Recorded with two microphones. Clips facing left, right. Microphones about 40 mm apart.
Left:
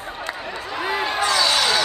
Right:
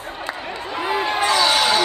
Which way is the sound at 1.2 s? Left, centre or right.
Right.